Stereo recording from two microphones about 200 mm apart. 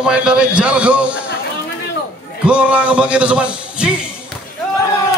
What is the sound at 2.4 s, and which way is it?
A man's voice, 5° right (ahead or behind).